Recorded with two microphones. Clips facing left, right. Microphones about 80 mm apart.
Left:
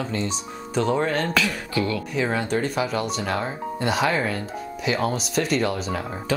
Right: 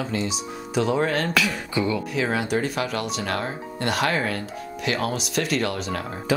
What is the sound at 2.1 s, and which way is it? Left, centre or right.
Speech, centre.